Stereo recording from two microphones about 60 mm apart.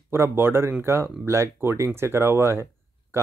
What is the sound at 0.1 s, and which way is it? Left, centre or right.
Speech, right.